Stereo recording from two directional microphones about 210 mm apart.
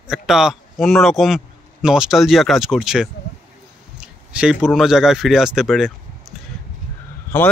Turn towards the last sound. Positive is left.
turn(degrees=10)  # may be behind; listen again after turning